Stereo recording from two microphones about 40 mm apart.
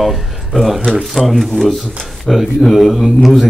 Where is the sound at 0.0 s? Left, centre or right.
Centre.